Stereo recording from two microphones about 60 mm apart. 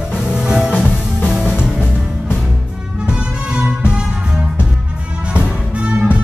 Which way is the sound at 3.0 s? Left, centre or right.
Centre.